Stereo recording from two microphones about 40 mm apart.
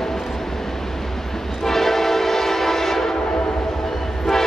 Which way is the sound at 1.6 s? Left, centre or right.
Centre.